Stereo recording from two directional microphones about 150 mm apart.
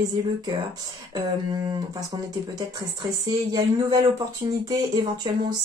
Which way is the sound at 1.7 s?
25° right (ahead or behind).